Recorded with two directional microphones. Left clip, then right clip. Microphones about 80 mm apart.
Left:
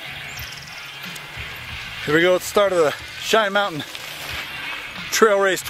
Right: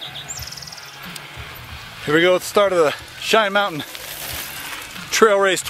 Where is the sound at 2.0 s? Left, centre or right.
Centre.